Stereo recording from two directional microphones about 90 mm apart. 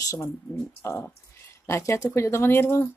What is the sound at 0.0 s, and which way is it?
Speech, 40° left (ahead or behind).